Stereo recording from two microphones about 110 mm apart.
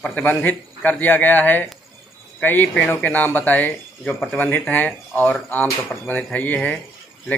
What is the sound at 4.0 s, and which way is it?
Speech, 5° left (ahead or behind).